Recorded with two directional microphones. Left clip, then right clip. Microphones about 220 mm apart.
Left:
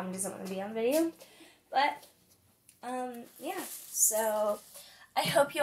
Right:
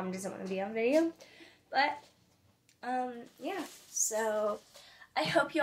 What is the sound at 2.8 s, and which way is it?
Speech, 15° right (ahead or behind).